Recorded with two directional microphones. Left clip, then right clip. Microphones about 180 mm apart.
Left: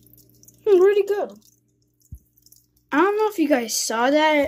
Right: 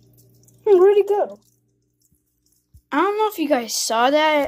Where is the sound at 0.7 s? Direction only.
40° left (ahead or behind).